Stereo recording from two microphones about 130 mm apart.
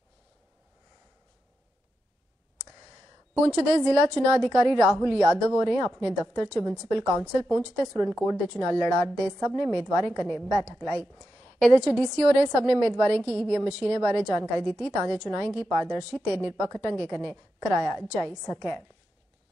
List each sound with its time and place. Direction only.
3.4 s a woman's voice: 5° left (ahead or behind)